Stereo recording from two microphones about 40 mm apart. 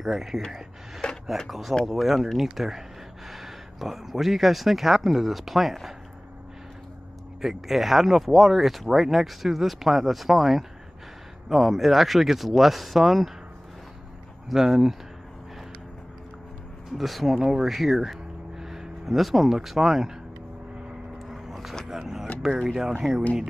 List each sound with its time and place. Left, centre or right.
0.1 s speech: centre
1.0 s a sound: centre
1.5 s speech: centre
7.4 s speech: centre
14.5 s speech: centre
16.9 s speech: centre
21.3 s vehicle: centre
21.8 s a sound: centre
22.6 s speech: centre